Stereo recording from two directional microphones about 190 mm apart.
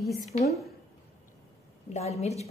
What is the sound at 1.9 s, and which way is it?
Speech, 35° left (ahead or behind).